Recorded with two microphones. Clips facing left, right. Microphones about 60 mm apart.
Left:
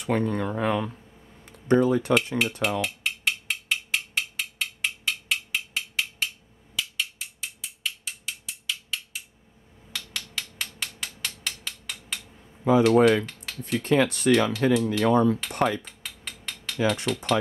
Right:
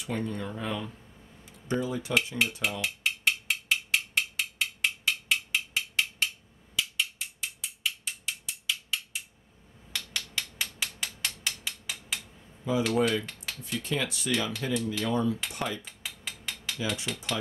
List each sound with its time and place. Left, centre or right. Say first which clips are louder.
0.0 s speech: left 8 dB; left
1.4 s a sound: left 10 dB; left
2.4 s dishes: left 2 dB; centre
2.8 s mechanisms: left 1 dB; centre
9.9 s hammer: even; centre
12.9 s speech: left 8 dB; left
13.7 s speech: left 10 dB; left
15.8 s mechanisms: even; centre
16.7 s speech: left 9 dB; left